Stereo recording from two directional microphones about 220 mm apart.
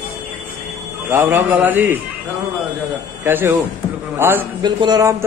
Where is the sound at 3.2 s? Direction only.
10° right (ahead or behind).